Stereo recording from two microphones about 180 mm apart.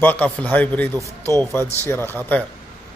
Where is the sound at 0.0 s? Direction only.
10° left (ahead or behind).